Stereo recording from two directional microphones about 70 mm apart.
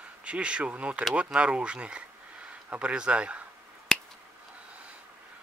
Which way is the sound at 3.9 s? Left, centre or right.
Centre.